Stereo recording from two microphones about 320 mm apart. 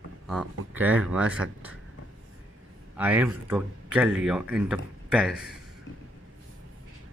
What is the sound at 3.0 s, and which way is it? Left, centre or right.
Speech, centre.